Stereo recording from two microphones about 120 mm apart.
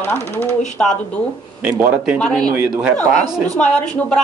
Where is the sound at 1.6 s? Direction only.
10° right (ahead or behind).